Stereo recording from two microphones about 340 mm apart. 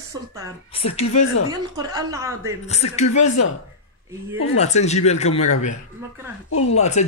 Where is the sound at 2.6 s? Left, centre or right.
Centre.